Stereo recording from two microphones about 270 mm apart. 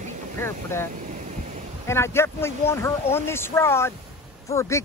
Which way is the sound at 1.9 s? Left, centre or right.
Centre.